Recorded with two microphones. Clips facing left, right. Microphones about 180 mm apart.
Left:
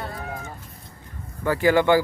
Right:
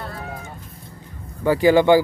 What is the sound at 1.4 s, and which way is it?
Speech, 15° right (ahead or behind).